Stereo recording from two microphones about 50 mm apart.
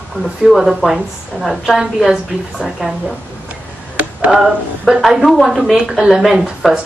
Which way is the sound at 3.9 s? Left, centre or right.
Right.